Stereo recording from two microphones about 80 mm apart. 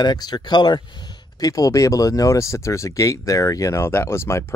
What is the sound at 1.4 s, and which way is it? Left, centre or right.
Speech, left.